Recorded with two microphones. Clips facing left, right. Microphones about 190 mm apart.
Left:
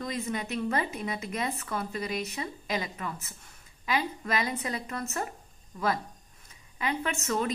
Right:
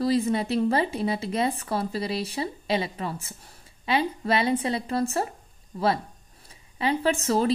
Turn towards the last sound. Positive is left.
turn(degrees=-30)  # may be behind; listen again after turning